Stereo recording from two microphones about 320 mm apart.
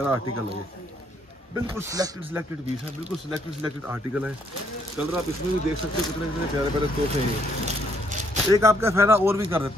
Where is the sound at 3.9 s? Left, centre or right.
Centre.